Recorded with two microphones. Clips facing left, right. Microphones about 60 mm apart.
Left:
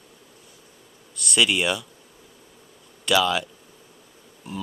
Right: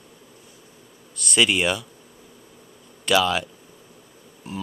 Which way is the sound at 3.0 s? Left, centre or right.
Centre.